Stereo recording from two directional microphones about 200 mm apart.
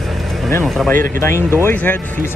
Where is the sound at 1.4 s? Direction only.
15° right (ahead or behind).